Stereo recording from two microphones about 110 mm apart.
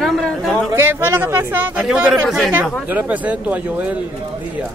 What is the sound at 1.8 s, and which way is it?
Speech, 5° right (ahead or behind).